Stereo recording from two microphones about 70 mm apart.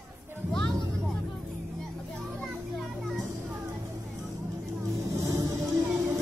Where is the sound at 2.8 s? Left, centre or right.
Centre.